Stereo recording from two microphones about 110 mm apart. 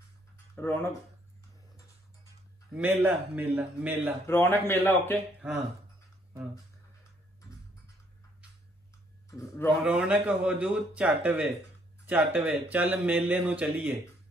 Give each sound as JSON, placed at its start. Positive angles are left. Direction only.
{"t": 0.6, "sound": "speech", "side_deg": 20}
{"t": 2.7, "sound": "speech", "side_deg": -15}
{"t": 4.3, "sound": "speech", "side_deg": 20}
{"t": 5.4, "sound": "speech", "side_deg": -15}
{"t": 9.8, "sound": "speech", "side_deg": -10}